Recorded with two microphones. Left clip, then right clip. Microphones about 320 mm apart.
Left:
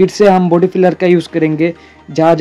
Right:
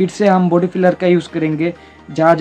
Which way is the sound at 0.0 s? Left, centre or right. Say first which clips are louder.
Left 5 dB; centre.